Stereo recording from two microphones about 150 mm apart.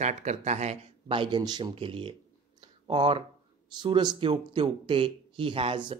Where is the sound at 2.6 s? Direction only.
35° right (ahead or behind).